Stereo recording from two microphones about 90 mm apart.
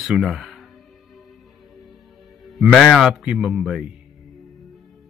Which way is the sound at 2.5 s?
Centre (ahead or behind).